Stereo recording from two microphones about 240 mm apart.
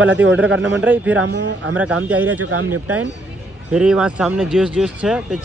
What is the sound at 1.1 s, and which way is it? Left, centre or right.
Speech, right.